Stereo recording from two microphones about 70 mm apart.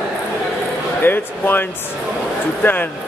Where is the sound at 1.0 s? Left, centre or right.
Left.